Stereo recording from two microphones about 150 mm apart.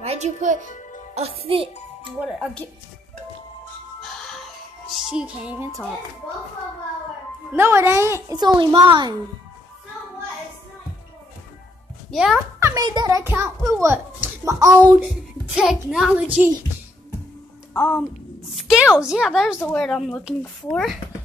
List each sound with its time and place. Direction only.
0.0 s speech: 45° right (ahead or behind)
0.7 s music: 55° left (ahead or behind)
1.4 s a child's voice: 40° right (ahead or behind)
2.1 s speech: 5° right (ahead or behind)
4.0 s music: centre (ahead or behind)
4.9 s a child's voice: 5° right (ahead or behind)
7.5 s a child's voice: 15° right (ahead or behind)
8.3 s a child's voice: 30° right (ahead or behind)
12.1 s a child's voice: centre (ahead or behind)
12.5 s a child's voice: 20° right (ahead or behind)
13.2 s a child's voice: 15° right (ahead or behind)
15.5 s speech: 5° right (ahead or behind)
17.7 s a woman's voice: 10° left (ahead or behind)
18.5 s speech: centre (ahead or behind)